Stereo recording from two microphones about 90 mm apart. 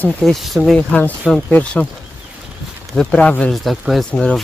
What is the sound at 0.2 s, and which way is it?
Speech, centre (ahead or behind).